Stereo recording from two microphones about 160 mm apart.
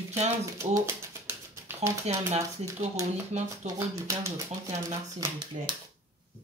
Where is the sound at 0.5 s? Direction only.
15° right (ahead or behind).